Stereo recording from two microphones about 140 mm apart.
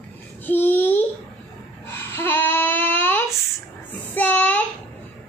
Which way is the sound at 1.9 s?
15° left (ahead or behind).